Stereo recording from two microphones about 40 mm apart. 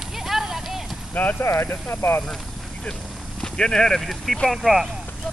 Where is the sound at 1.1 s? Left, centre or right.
Left.